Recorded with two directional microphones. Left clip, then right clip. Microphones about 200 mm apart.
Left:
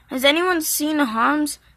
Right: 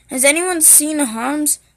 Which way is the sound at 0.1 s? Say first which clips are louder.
Right 2 dB; 10° right (ahead or behind).